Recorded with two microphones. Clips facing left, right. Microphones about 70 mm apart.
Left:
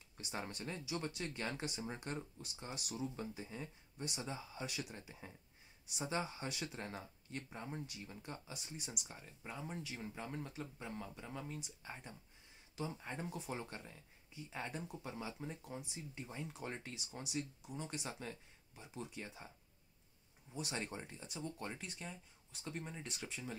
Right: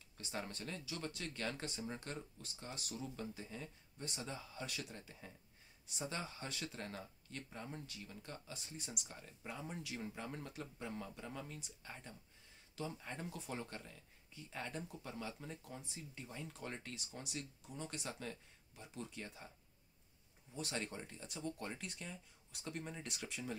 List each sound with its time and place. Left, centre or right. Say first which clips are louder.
0.2 s speech: left 1 dB; centre
16.9 s speech: left 4 dB; centre
20.5 s speech: even; centre